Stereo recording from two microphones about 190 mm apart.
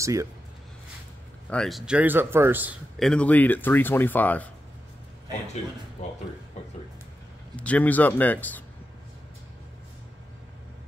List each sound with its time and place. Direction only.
0.0 s a man's voice: 15° right (ahead or behind)
1.5 s a man's voice: centre (ahead or behind)
3.0 s speech: 5° left (ahead or behind)
7.5 s speech: 5° left (ahead or behind)